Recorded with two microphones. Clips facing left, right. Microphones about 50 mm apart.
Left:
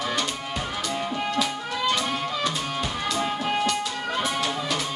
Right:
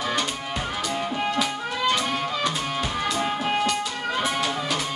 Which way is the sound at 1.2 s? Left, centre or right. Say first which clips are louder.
Right 1 dB; centre.